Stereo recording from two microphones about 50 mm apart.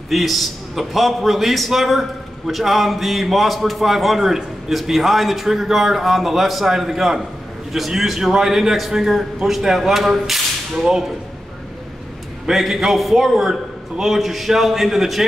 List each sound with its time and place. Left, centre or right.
0.1 s a man's voice: centre
12.4 s a man's voice: centre